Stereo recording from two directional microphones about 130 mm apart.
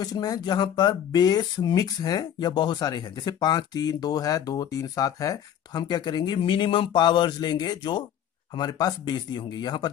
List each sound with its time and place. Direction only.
0.0 s speech: 30° left (ahead or behind)